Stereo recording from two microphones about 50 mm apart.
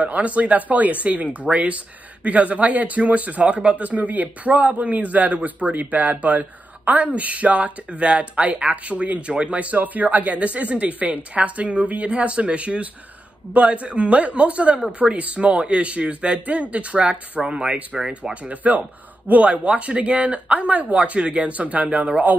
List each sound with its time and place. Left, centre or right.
0.0 s speech: right
17.9 s speech: centre
18.3 s speech: right